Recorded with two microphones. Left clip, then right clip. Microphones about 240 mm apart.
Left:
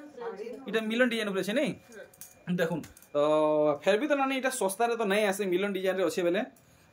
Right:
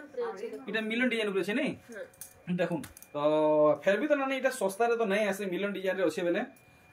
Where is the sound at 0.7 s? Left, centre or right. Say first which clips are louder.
Left 3 dB; centre.